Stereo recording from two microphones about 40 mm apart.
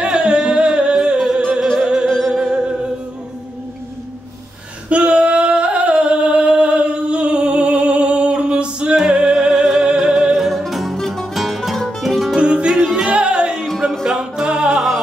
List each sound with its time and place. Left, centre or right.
0.0 s music: right
4.8 s singing: right
8.9 s music: right
10.5 s music: centre
11.0 s music: centre
12.4 s music: right